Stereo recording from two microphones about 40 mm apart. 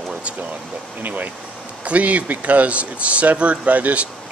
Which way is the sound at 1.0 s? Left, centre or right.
Right.